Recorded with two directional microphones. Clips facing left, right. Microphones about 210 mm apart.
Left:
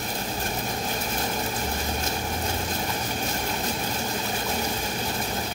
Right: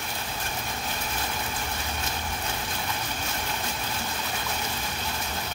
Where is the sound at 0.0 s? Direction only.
40° left (ahead or behind).